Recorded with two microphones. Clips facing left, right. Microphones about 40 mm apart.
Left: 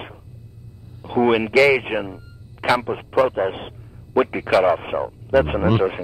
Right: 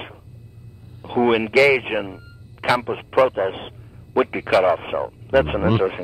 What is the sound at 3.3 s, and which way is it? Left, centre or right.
Speech, centre.